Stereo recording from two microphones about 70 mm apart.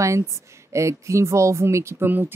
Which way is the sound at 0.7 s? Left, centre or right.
Right.